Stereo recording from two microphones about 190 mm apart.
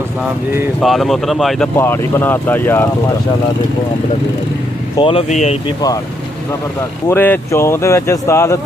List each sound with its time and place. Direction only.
0.7 s speech: centre (ahead or behind)
1.8 s speech: 10° left (ahead or behind)
4.9 s speech: 30° left (ahead or behind)
7.1 s speech: 10° left (ahead or behind)